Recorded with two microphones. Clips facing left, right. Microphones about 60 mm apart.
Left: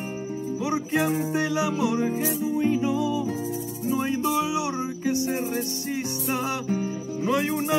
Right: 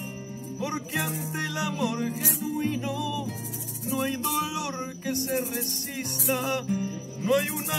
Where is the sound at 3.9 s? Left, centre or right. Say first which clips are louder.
Left 3 dB; centre.